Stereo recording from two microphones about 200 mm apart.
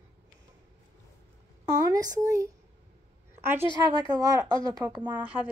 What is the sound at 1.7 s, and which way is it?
Speech, 15° right (ahead or behind).